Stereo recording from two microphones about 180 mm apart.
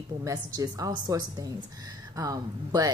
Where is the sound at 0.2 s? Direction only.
20° right (ahead or behind).